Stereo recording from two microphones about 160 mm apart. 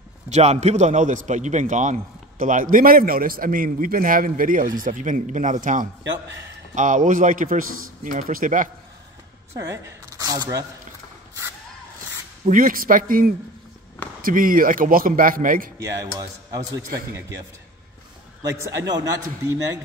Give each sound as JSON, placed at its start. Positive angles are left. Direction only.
{"t": 0.3, "sound": "a man's voice", "side_deg": -45}
{"t": 9.7, "sound": "speech", "side_deg": -20}
{"t": 12.4, "sound": "a man's voice", "side_deg": -60}
{"t": 15.8, "sound": "a man's voice", "side_deg": -20}
{"t": 18.5, "sound": "a man's voice", "side_deg": -20}